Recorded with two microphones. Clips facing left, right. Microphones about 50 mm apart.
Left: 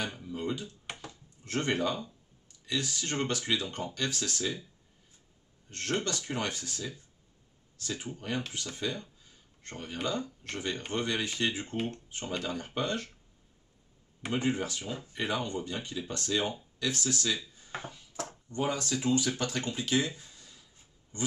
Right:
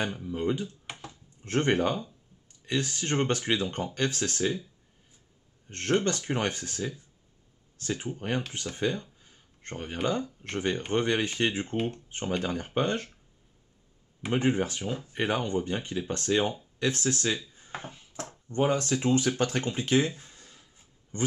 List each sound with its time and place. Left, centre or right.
0.2 s speech: right
0.8 s a sound: centre
1.4 s speech: right
5.7 s speech: right
9.2 s a sound: right
10.0 s speech: right
11.7 s speech: centre
12.1 s speech: right
14.3 s speech: right
17.6 s a sound: right
18.5 s speech: right
20.2 s a sound: right